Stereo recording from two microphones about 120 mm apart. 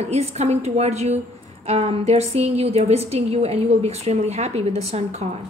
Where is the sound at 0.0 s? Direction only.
60° right (ahead or behind).